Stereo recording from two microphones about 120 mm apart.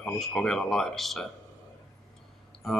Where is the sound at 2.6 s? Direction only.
Centre (ahead or behind).